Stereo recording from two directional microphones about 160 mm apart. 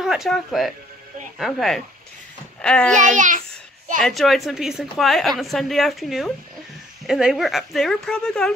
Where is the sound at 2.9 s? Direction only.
50° right (ahead or behind).